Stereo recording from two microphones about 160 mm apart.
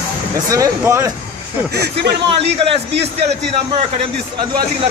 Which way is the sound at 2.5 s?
40° right (ahead or behind).